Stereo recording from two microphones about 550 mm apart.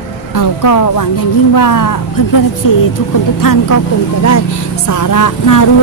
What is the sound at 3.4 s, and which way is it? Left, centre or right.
Speech, left.